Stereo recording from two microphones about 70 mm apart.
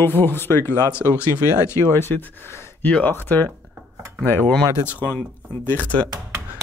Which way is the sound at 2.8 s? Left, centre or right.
Left.